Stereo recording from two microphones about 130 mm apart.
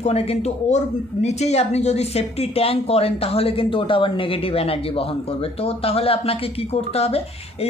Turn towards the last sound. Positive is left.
turn(degrees=50)  # may be behind; listen again after turning